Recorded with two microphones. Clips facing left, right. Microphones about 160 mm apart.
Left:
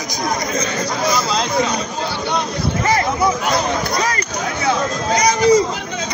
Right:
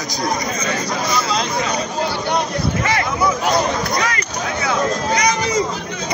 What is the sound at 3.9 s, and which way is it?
Speech, 45° left (ahead or behind).